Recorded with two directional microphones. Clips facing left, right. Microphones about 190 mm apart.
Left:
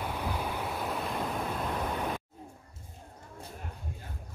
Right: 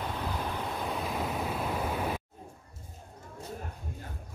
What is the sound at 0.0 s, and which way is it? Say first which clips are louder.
Waves: even; 10° left (ahead or behind).